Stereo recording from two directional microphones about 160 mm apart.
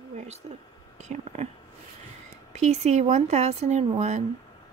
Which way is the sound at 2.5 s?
45° right (ahead or behind).